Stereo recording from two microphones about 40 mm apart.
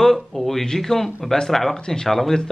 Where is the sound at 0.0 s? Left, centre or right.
Centre.